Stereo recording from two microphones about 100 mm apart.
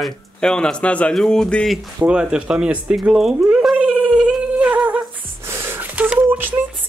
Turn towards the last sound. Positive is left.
turn(degrees=-20)  # may be behind; listen again after turning